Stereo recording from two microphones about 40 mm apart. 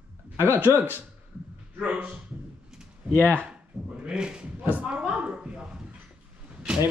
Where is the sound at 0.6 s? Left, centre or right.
Right.